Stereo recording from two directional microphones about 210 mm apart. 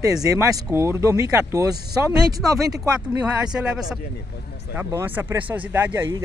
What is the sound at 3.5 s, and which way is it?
Speech, 5° right (ahead or behind).